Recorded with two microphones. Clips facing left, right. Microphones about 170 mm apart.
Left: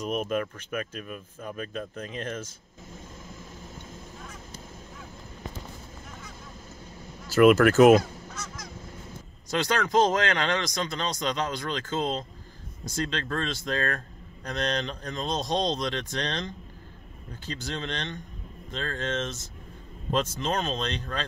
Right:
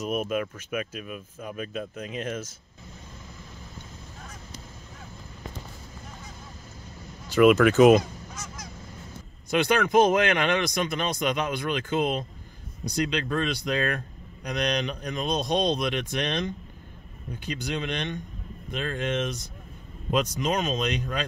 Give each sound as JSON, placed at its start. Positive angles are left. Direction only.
{"t": 0.0, "sound": "speech", "side_deg": -10}
{"t": 7.2, "sound": "speech", "side_deg": 5}
{"t": 9.5, "sound": "speech", "side_deg": -15}